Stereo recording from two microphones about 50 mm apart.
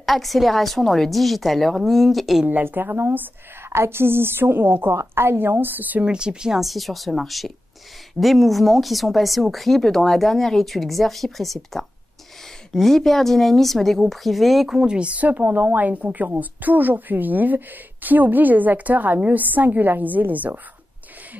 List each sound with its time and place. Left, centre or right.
0.0 s speech: centre
2.4 s a woman's voice: right
6.0 s speech: centre
6.6 s speech: centre
14.8 s a woman's voice: centre; by 15.9 s right
15.9 s a woman's voice: right